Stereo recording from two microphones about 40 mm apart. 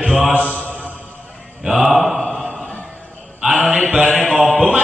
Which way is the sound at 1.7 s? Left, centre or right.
Centre.